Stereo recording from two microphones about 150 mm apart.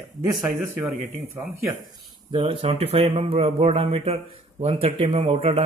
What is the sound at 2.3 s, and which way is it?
Speech, 35° right (ahead or behind).